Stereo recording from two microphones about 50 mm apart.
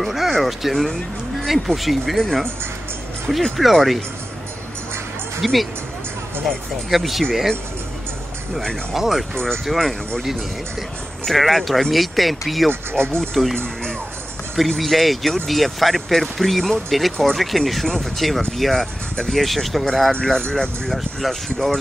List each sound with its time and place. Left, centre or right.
0.0 s speech: centre
2.2 s speech: centre
3.5 s speech: centre
5.4 s speech: centre
6.9 s speech: centre
8.9 s speech: centre
9.3 s speech: centre
11.2 s speech: centre
12.9 s speech: right
13.2 s speech: centre
14.8 s speech: centre